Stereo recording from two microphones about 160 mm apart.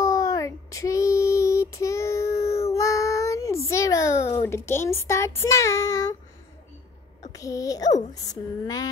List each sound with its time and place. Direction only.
0.0 s child singing: 20° left (ahead or behind)
4.4 s speech: 15° left (ahead or behind)
7.3 s speech: 20° left (ahead or behind)